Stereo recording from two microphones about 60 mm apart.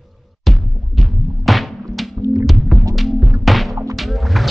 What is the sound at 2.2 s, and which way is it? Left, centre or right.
Music, right.